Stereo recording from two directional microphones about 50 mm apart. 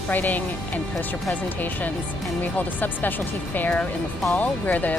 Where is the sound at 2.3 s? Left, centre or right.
Left.